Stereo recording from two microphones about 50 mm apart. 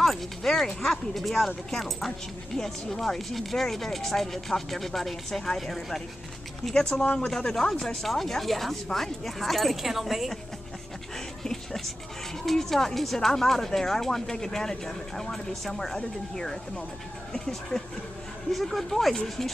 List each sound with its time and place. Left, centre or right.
0.0 s speech: centre
6.7 s speech: centre
11.4 s music: centre
12.4 s speech: centre
17.3 s speech: centre